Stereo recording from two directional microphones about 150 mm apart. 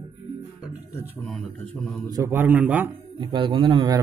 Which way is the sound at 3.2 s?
35° right (ahead or behind).